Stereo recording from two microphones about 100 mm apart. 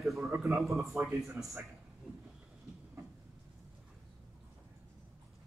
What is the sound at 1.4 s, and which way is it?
Speech, 20° right (ahead or behind).